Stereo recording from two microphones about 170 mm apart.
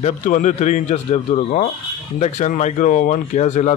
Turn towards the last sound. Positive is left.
turn(degrees=45)  # may be behind; listen again after turning